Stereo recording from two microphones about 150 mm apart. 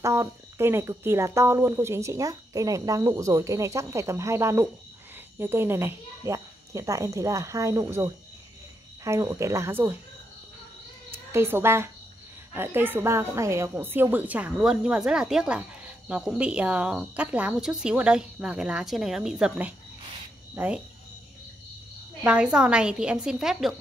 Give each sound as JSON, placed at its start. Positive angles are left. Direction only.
{"t": 0.0, "sound": "a woman's voice", "side_deg": -20}
{"t": 11.1, "sound": "a woman's voice", "side_deg": -15}
{"t": 22.2, "sound": "a woman's voice", "side_deg": -5}